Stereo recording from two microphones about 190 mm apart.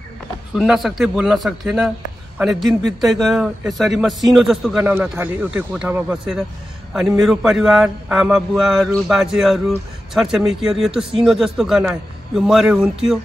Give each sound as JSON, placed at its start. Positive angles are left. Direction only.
{"t": 0.6, "sound": "a man's voice", "side_deg": 0}